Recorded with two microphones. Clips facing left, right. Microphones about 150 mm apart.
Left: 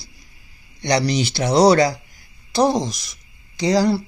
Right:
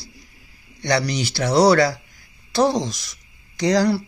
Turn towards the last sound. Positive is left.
turn(degrees=10)  # may be behind; listen again after turning